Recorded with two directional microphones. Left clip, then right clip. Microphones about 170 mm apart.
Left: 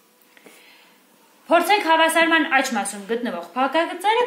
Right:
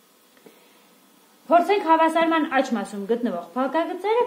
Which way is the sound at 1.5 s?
55° right (ahead or behind).